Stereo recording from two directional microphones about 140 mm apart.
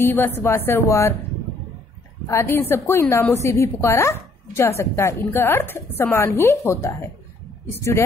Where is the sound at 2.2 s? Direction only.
15° left (ahead or behind).